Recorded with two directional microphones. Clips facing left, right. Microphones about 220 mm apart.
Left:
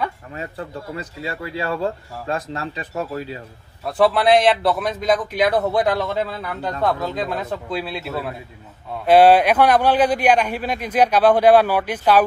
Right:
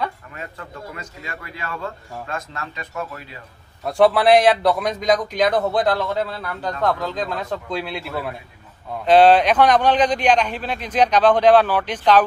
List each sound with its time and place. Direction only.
0.3 s a man's voice: 30° left (ahead or behind)
3.8 s a man's voice: centre (ahead or behind)
9.0 s a man's voice: 10° left (ahead or behind)